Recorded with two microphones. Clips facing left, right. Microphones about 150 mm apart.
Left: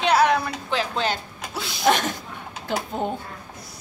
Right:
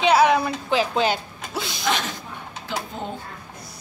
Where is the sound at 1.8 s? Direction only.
50° left (ahead or behind).